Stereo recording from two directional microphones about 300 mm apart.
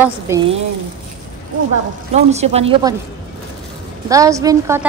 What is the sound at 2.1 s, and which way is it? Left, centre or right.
Speech, right.